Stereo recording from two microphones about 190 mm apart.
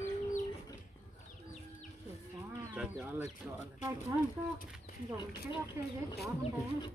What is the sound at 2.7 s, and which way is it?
Livestock, 5° right (ahead or behind).